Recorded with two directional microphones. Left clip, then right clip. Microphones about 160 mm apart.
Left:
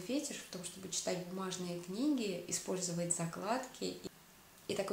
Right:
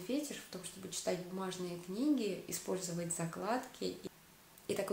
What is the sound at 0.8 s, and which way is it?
Speech, 35° right (ahead or behind).